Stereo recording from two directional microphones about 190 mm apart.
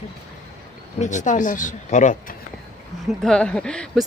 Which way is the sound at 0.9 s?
40° left (ahead or behind).